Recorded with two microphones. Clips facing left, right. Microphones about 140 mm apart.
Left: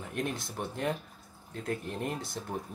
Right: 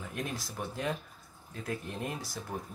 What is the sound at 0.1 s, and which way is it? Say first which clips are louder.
Speech: left 5 dB; 60° left (ahead or behind).